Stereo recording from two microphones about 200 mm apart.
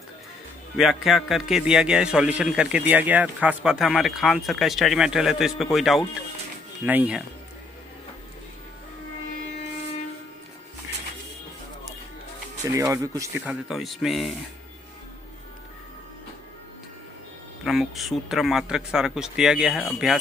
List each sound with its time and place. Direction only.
0.7 s a man's voice: centre (ahead or behind)
12.6 s speech: 15° right (ahead or behind)
13.5 s a man's voice: centre (ahead or behind)
17.6 s a man's voice: centre (ahead or behind)